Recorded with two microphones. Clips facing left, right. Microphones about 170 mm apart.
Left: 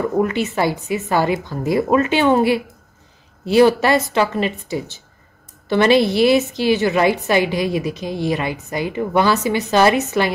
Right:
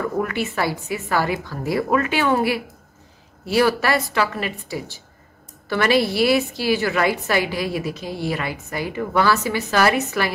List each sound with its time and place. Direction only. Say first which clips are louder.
0.0 s a woman's voice: left 5 dB; 20° left (ahead or behind)